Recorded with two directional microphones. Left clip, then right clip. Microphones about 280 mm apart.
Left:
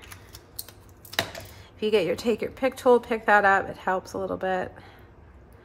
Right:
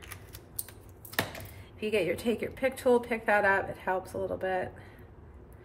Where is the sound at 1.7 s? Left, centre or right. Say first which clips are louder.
Left 6 dB; centre.